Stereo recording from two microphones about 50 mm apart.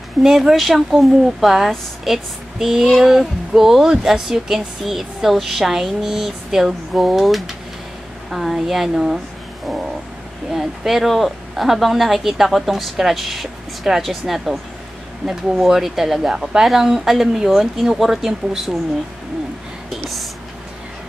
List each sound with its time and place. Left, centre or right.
0.2 s speech: centre
10.5 s speech: centre